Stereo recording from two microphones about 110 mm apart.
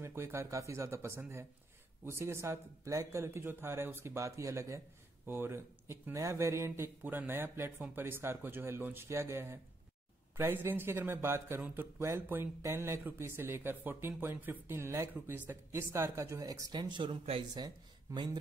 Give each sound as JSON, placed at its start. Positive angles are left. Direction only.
{"t": 0.0, "sound": "speech", "side_deg": -25}